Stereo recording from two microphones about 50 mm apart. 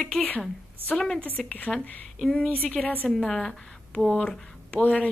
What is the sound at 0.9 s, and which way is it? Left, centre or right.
Speech, centre.